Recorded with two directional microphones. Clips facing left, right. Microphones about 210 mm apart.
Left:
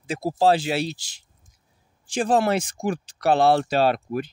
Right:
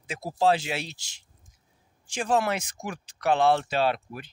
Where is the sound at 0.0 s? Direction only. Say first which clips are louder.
Left 4 dB; 35° left (ahead or behind).